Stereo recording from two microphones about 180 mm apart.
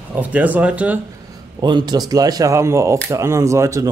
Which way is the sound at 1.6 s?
25° right (ahead or behind).